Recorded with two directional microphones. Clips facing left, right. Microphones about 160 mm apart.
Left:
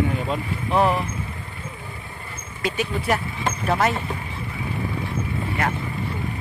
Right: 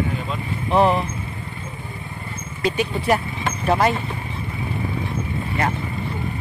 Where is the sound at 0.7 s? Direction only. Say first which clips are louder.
Right 3 dB; 25° right (ahead or behind).